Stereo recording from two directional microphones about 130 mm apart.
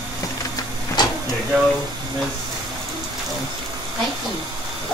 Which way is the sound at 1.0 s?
35° left (ahead or behind).